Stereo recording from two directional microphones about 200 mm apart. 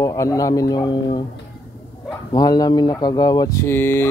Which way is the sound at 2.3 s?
20° left (ahead or behind).